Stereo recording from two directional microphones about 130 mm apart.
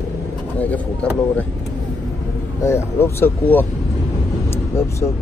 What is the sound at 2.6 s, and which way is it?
Speech, 20° left (ahead or behind).